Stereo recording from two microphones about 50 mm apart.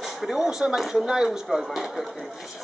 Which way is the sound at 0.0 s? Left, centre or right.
Centre.